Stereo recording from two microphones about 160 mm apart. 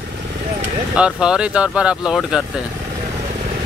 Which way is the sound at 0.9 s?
5° right (ahead or behind).